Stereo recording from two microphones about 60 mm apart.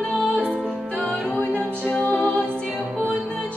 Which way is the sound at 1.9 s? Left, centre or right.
Left.